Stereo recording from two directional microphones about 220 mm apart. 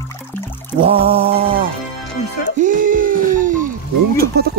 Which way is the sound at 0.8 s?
25° right (ahead or behind).